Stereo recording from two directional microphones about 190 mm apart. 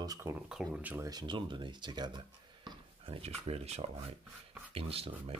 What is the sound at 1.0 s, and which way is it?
Speech, 25° right (ahead or behind).